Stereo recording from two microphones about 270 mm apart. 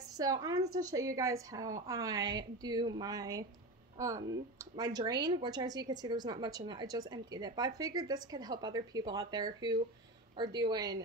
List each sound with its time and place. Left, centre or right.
0.2 s a woman's voice: centre
4.7 s a woman's voice: centre